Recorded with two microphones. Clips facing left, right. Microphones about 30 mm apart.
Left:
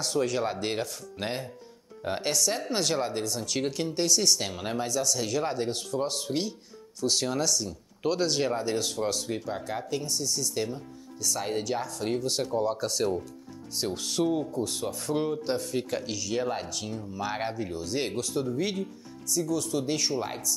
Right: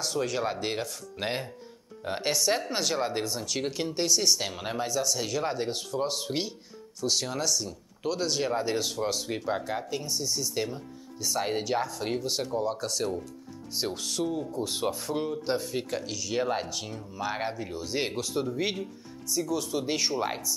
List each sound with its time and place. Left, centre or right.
0.0 s speech: centre
2.3 s speech: right
2.7 s speech: centre
3.1 s speech: centre
3.4 s speech: centre
7.0 s speech: centre
8.0 s speech: centre
8.5 s speech: centre
15.0 s speech: centre
16.0 s speech: centre
16.3 s speech: centre